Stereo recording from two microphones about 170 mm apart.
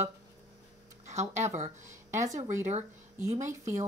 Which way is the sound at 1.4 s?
45° right (ahead or behind).